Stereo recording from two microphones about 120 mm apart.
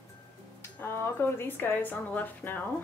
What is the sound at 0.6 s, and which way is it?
A woman's voice, 20° left (ahead or behind).